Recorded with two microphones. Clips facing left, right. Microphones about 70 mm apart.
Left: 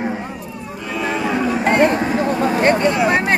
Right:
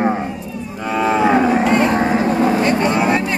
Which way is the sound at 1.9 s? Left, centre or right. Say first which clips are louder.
Right 3 dB; right.